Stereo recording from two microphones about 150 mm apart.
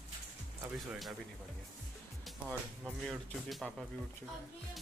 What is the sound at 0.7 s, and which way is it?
Speech, centre (ahead or behind).